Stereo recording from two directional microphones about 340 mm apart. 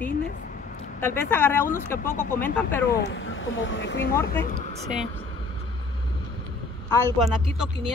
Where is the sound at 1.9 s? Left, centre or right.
Left.